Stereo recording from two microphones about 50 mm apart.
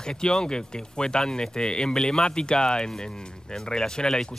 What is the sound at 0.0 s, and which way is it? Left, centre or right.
Speech, centre.